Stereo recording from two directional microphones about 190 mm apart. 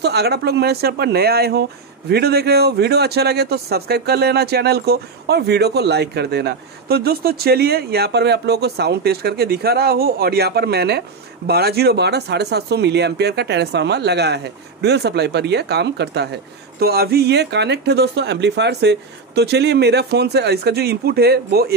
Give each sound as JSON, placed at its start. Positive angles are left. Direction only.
{"t": 0.0, "sound": "speech", "side_deg": -60}